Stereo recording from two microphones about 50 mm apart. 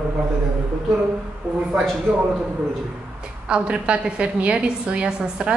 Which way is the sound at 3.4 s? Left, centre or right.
Right.